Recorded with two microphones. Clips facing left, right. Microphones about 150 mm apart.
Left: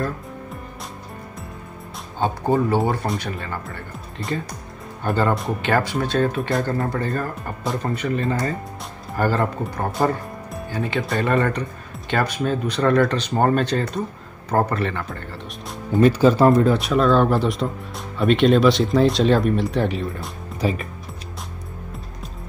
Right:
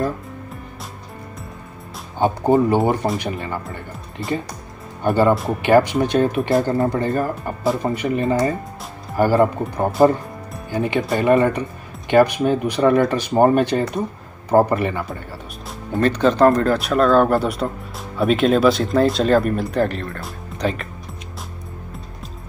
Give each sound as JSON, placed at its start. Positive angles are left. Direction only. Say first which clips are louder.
{"t": 2.1, "sound": "speech", "louder": "right 4 dB", "side_deg": -20}
{"t": 5.0, "sound": "speech", "louder": "right 5 dB", "side_deg": -15}
{"t": 16.0, "sound": "speech", "louder": "even", "side_deg": 10}